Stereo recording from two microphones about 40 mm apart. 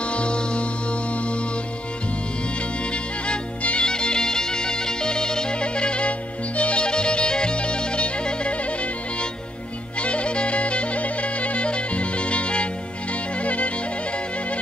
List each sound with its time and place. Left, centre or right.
0.0 s music: left
2.9 s music: left
9.9 s music: left